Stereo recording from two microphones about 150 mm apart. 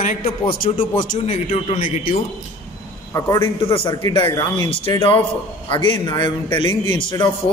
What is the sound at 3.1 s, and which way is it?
Speech, 20° left (ahead or behind).